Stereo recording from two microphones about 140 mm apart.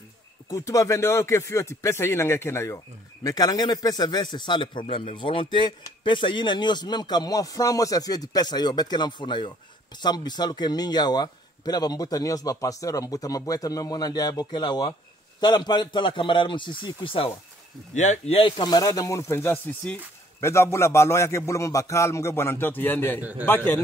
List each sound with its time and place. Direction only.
0.5 s a man's voice: 25° left (ahead or behind)
17.9 s speech: 60° left (ahead or behind)
18.6 s a man's voice: 30° left (ahead or behind)